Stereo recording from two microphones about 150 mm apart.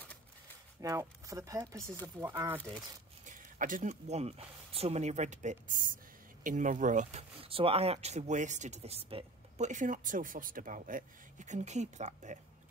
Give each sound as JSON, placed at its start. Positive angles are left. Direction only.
{"t": 0.7, "sound": "speech", "side_deg": -20}
{"t": 3.3, "sound": "a sound", "side_deg": -60}
{"t": 3.9, "sound": "speech", "side_deg": -45}